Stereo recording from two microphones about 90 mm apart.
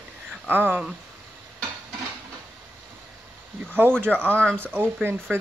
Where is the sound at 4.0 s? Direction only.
20° right (ahead or behind).